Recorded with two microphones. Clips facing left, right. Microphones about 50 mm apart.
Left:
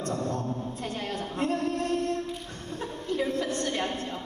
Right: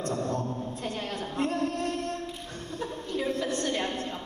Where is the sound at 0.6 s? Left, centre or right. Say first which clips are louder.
Even; left.